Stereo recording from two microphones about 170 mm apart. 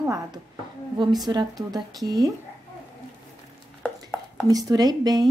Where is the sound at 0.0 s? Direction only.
20° right (ahead or behind).